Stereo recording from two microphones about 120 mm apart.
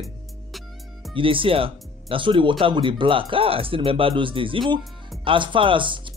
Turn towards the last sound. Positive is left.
turn(degrees=-45)  # may be behind; listen again after turning